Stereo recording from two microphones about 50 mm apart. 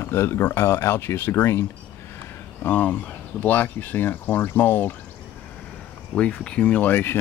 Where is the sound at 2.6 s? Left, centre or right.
Left.